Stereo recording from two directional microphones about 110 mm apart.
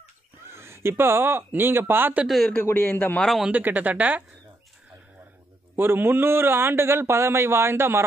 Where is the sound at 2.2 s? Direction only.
Centre (ahead or behind).